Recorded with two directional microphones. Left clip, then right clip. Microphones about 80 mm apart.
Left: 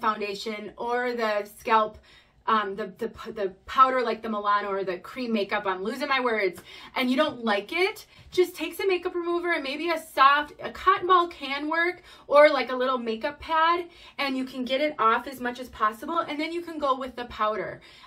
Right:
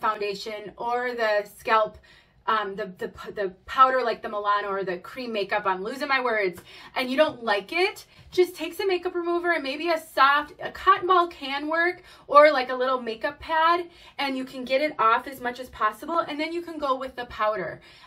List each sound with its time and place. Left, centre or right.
0.1 s a woman's voice: left
14.5 s a woman's voice: centre
16.3 s a woman's voice: left